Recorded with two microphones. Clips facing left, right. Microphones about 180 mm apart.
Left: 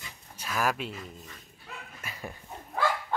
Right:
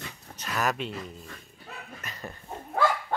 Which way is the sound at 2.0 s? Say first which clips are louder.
Left 2 dB; 10° left (ahead or behind).